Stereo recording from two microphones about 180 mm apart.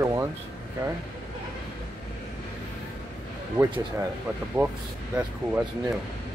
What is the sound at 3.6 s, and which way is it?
Speech, 15° right (ahead or behind).